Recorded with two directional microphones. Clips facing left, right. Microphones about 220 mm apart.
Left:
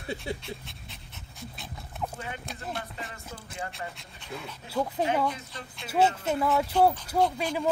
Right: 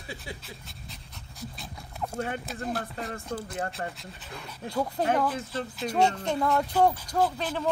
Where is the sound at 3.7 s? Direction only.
Centre (ahead or behind).